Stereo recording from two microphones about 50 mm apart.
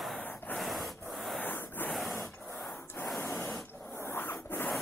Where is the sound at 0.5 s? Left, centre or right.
Centre.